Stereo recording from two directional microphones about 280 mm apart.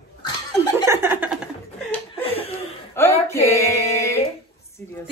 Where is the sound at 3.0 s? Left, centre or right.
Centre.